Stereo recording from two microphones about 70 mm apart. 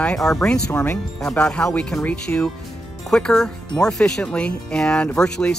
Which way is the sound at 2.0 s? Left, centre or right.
Left.